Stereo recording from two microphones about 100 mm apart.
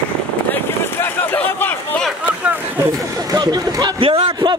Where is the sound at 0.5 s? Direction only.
25° left (ahead or behind).